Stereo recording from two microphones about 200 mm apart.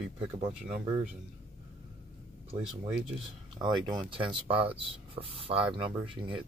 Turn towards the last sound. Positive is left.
turn(degrees=-25)  # may be behind; listen again after turning